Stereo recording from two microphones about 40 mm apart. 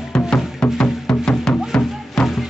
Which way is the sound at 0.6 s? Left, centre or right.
Centre.